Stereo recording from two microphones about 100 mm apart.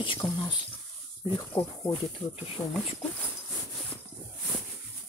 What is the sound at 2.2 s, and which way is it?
Speech, 15° left (ahead or behind).